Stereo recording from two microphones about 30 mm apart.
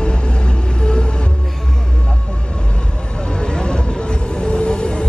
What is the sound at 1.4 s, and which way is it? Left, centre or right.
Music, centre.